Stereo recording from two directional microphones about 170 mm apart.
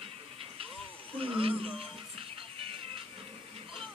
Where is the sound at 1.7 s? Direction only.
35° right (ahead or behind).